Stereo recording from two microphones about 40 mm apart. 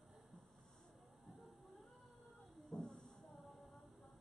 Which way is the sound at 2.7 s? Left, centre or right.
Centre.